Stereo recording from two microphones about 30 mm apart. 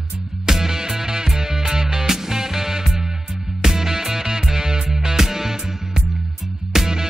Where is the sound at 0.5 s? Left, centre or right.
Centre.